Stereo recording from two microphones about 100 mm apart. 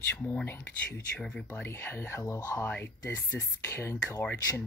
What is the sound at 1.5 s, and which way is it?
Speech, 20° left (ahead or behind).